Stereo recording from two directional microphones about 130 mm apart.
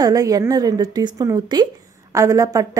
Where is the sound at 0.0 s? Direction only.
30° right (ahead or behind).